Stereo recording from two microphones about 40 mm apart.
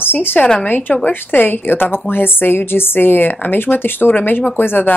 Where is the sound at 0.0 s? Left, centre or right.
Left.